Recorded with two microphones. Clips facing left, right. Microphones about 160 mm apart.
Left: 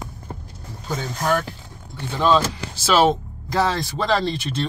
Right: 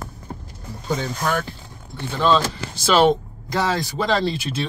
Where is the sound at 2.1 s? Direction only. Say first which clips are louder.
Even; 10° left (ahead or behind).